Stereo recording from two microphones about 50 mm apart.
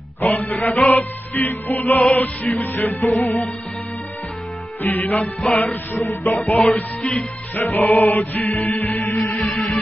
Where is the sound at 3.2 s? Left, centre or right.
Left.